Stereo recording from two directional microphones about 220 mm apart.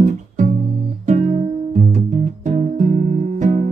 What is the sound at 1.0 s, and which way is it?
Music, 35° right (ahead or behind).